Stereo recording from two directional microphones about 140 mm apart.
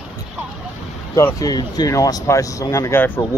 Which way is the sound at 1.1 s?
25° left (ahead or behind).